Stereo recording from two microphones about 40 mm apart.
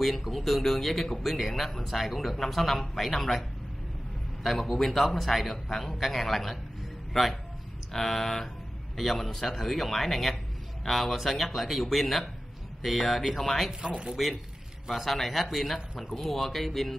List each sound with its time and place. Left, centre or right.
0.0 s speech: centre
13.4 s speech: centre
13.7 s speech: centre
14.9 s speech: centre